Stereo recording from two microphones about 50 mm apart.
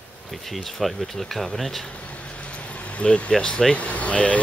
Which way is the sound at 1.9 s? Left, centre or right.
Left.